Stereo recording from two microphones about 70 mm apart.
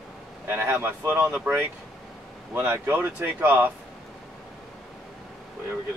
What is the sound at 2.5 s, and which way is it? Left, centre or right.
Speech, right.